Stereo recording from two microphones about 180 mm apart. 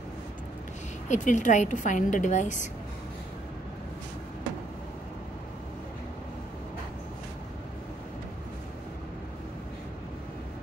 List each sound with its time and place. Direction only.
1.0 s a woman's voice: 45° left (ahead or behind)